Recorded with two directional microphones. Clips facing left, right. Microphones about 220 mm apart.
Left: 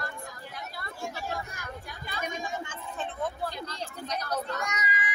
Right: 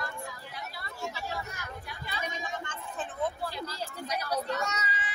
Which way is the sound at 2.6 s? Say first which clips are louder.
Left 1 dB; 5° left (ahead or behind).